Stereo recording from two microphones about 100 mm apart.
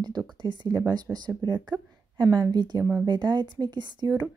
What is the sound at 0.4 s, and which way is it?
A woman's voice, 50° right (ahead or behind).